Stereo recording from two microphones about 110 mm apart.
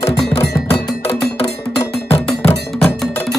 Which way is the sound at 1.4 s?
25° left (ahead or behind).